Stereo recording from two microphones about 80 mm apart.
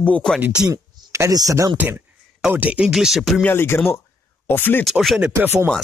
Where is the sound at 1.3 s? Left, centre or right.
Right.